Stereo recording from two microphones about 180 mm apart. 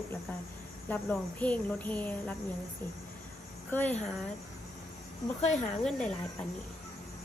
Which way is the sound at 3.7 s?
10° left (ahead or behind).